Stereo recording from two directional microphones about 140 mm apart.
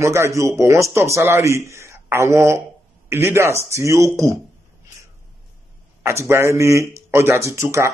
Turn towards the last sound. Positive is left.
turn(degrees=-20)  # may be behind; listen again after turning